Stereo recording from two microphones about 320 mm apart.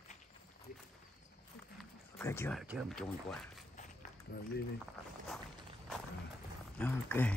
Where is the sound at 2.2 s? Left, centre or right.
Centre.